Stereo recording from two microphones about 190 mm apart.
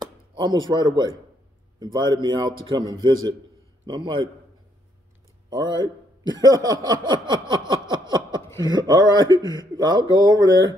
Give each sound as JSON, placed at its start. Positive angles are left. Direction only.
{"t": 0.0, "sound": "a sound", "side_deg": -25}
{"t": 1.8, "sound": "a man's voice", "side_deg": -20}
{"t": 5.5, "sound": "a man's voice", "side_deg": -20}